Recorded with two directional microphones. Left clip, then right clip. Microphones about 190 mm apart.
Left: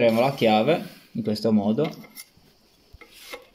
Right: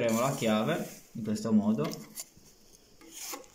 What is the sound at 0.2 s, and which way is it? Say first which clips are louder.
Speech: left 9 dB; 35° left (ahead or behind).